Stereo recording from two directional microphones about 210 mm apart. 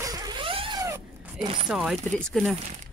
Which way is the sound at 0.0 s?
15° right (ahead or behind).